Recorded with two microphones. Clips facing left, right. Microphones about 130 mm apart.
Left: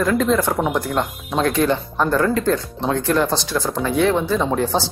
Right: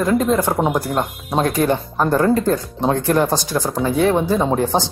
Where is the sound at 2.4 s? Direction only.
40° right (ahead or behind).